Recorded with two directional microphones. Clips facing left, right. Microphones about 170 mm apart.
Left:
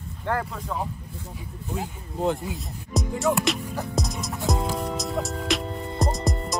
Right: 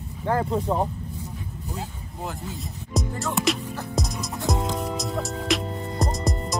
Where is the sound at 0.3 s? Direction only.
25° right (ahead or behind).